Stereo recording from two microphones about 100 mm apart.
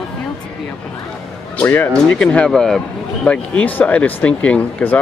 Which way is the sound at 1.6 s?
20° left (ahead or behind).